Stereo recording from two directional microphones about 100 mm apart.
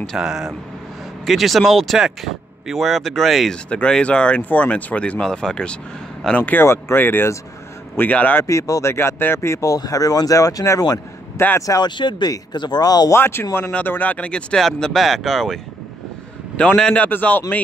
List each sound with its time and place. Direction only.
0.0 s speech: centre (ahead or behind); by 8.5 s 15° left (ahead or behind)
8.5 s speech: 35° left (ahead or behind)
11.6 s speech: 35° left (ahead or behind)
12.0 s speech: 45° left (ahead or behind)
13.1 s speech: 25° left (ahead or behind)